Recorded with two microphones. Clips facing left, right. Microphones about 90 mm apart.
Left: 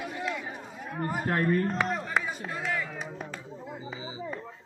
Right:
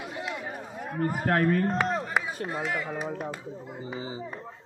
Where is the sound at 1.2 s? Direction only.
65° right (ahead or behind).